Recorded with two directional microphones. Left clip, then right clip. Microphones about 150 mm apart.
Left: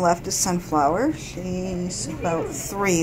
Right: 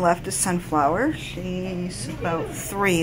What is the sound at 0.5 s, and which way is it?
Speech, centre (ahead or behind).